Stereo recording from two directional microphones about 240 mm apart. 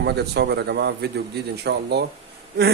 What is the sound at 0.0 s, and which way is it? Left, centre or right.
A man's voice, right.